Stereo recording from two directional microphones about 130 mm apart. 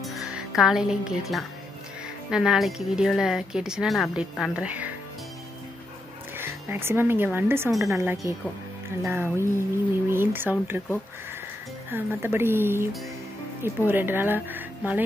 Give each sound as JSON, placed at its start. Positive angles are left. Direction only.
{"t": 0.0, "sound": "music", "side_deg": -5}
{"t": 2.3, "sound": "a woman's voice", "side_deg": -5}
{"t": 6.3, "sound": "music", "side_deg": -15}
{"t": 7.3, "sound": "speech", "side_deg": -15}
{"t": 11.9, "sound": "speech", "side_deg": -20}